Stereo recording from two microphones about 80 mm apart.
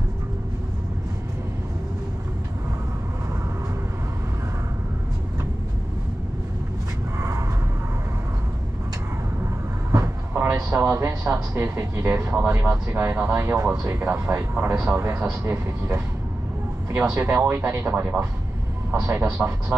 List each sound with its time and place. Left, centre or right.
7.2 s a sound: right
9.4 s vehicle: right
10.8 s speech: right
12.9 s speech: centre
17.0 s speech: right